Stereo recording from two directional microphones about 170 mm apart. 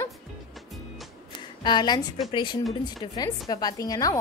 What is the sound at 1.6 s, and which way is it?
A woman's voice, 25° left (ahead or behind).